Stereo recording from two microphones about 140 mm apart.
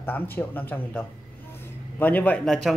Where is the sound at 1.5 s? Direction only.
15° left (ahead or behind).